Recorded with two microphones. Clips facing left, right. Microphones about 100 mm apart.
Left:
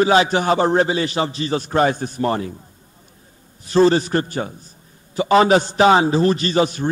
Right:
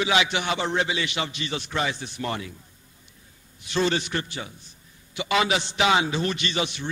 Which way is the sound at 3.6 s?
40° left (ahead or behind).